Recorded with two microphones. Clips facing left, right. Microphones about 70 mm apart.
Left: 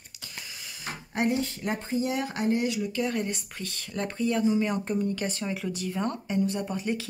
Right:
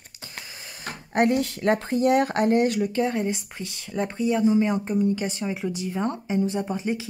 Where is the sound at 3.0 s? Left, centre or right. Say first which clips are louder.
Right 4 dB; right.